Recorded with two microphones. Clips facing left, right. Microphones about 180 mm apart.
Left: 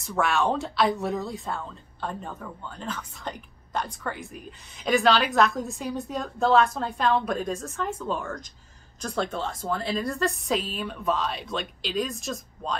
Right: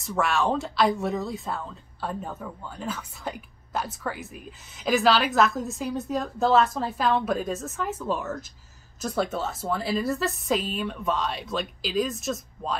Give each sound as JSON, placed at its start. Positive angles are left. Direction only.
{"t": 0.0, "sound": "speech", "side_deg": 0}